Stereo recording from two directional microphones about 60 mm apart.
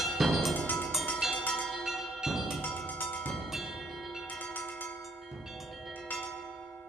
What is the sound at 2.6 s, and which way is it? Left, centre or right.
Music, left.